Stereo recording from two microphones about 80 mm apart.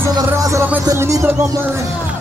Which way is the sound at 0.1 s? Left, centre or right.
Right.